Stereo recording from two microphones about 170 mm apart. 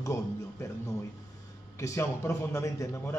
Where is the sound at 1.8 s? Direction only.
15° left (ahead or behind).